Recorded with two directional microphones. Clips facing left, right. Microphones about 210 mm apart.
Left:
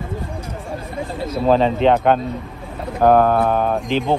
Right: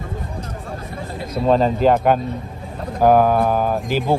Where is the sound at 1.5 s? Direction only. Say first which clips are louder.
Even; centre (ahead or behind).